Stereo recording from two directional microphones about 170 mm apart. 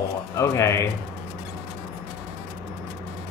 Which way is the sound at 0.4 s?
15° left (ahead or behind).